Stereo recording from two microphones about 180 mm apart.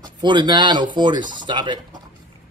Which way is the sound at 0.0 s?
25° right (ahead or behind).